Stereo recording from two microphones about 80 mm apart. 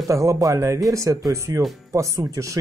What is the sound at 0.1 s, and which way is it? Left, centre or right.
Speech, right.